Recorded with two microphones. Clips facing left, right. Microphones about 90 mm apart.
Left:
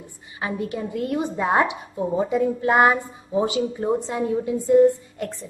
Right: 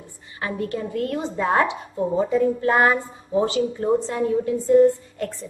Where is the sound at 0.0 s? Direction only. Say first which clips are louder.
Even; 15° left (ahead or behind).